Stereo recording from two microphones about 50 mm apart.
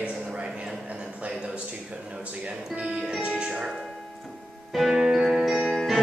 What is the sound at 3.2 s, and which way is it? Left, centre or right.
Music, centre.